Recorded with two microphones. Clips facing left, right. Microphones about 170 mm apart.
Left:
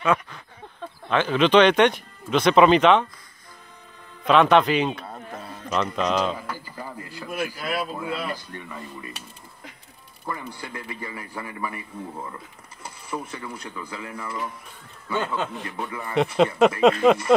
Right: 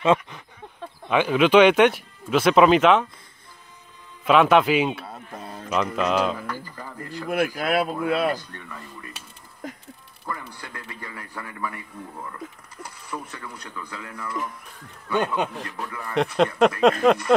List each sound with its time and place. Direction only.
0.0 s speech: 25° right (ahead or behind)
1.0 s speech: 10° right (ahead or behind)
4.3 s speech: 5° right (ahead or behind)
6.3 s a sound: 10° left (ahead or behind)
7.2 s speech: 55° right (ahead or behind)
8.4 s speech: 10° left (ahead or behind)
10.2 s speech: 10° left (ahead or behind)
12.1 s speech: 20° left (ahead or behind)
12.8 s speech: 10° left (ahead or behind)
15.1 s speech: 15° right (ahead or behind)
15.5 s speech: centre (ahead or behind)